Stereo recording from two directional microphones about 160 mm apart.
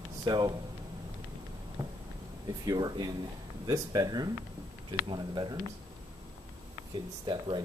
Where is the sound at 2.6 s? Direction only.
25° right (ahead or behind).